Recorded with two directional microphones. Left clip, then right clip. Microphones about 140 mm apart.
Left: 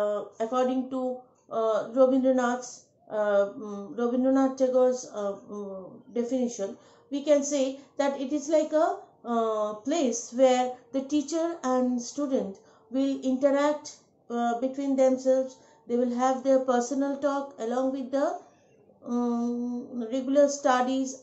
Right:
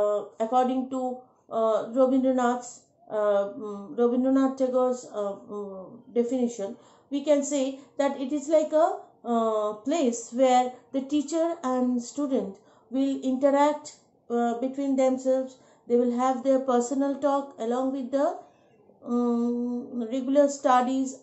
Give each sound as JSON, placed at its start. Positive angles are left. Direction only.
{"t": 0.0, "sound": "speech", "side_deg": -25}
{"t": 6.1, "sound": "speech", "side_deg": -20}